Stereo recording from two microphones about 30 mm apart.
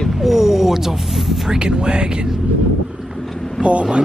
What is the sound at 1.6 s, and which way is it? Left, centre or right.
Speech, right.